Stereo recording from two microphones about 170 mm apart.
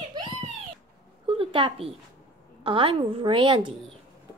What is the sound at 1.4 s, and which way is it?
A woman's voice, 30° right (ahead or behind).